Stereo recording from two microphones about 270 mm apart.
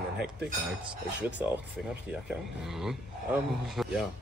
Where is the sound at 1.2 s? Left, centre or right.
Centre.